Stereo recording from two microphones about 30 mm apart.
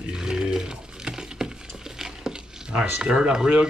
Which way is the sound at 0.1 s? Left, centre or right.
Right.